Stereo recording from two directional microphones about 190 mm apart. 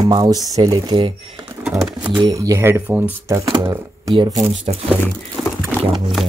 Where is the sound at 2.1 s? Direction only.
20° right (ahead or behind).